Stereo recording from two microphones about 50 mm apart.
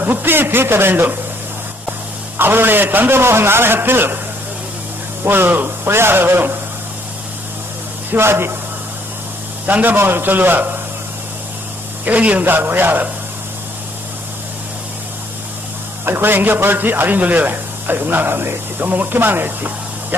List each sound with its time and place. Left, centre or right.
0.0 s a man's voice: right
2.3 s a man's voice: right
5.2 s a man's voice: right
8.1 s speech: right
9.7 s speech: right
9.9 s a man's voice: right
12.0 s speech: right
12.4 s a man's voice: right
16.1 s speech: right